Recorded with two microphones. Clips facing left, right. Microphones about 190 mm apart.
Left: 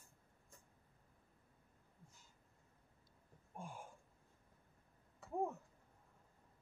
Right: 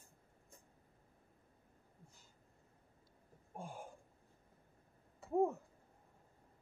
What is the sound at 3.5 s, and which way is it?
Gasp, 35° right (ahead or behind).